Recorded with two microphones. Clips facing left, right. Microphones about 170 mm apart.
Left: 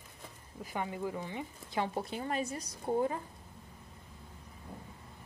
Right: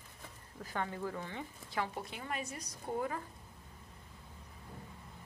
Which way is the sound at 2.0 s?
35° left (ahead or behind).